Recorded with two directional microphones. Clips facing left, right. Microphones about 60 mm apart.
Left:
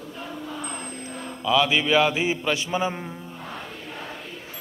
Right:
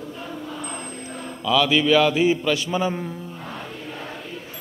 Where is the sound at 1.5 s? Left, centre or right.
Centre.